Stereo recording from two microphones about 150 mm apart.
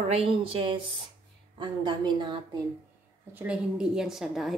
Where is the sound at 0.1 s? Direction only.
40° right (ahead or behind).